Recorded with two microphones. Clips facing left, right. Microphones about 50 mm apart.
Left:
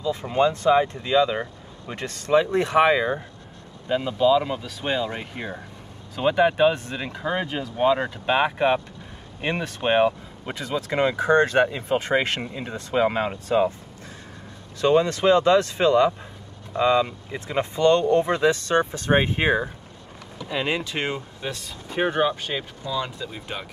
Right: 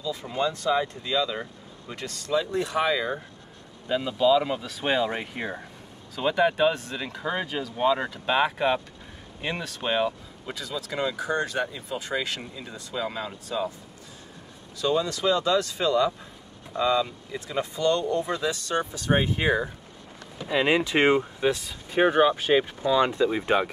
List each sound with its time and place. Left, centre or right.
0.0 s speech: left
3.9 s speech: centre
6.1 s speech: centre; by 13.7 s left
14.8 s speech: left
20.4 s speech: centre
22.5 s speech: right